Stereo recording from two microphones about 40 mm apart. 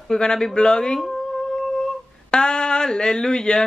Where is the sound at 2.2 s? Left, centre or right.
Left.